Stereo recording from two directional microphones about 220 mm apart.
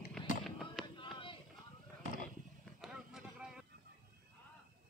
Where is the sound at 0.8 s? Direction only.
20° left (ahead or behind).